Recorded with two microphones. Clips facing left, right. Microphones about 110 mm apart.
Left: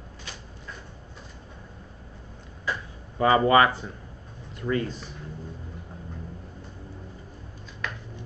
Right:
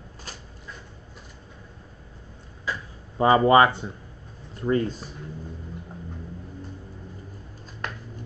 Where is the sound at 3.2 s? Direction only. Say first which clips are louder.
Right 2 dB; 25° right (ahead or behind).